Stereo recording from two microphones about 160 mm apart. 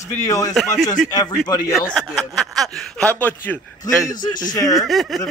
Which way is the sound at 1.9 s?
Centre (ahead or behind).